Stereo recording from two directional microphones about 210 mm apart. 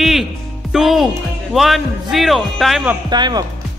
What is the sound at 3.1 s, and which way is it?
Speech, 20° right (ahead or behind).